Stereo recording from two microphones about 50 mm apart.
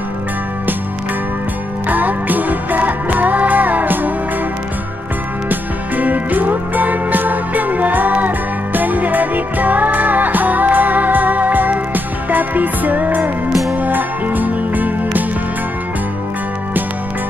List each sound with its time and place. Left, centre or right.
1.9 s music: right
5.5 s music: right
13.5 s music: centre
13.8 s music: right